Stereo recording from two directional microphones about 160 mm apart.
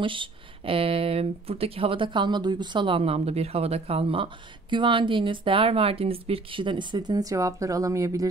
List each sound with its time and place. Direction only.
0.0 s speech: 30° right (ahead or behind)